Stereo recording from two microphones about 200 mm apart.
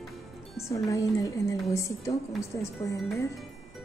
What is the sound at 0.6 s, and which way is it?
A woman's voice, 15° left (ahead or behind).